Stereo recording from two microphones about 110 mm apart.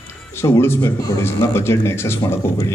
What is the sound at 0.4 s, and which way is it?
A man's voice, 20° left (ahead or behind).